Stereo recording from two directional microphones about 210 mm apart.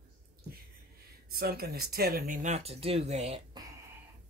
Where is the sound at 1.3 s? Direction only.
45° right (ahead or behind); by 3.6 s 30° right (ahead or behind).